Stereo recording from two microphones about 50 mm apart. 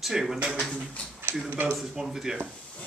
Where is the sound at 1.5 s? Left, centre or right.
Right.